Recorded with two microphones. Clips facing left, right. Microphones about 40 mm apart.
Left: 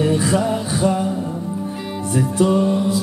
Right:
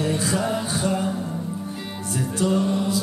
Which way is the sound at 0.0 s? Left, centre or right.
Left.